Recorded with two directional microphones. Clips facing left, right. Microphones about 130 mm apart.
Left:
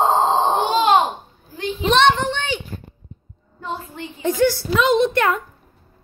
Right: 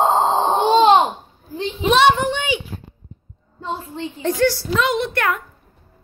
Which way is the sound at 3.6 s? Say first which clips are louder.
Right 2 dB; 25° right (ahead or behind).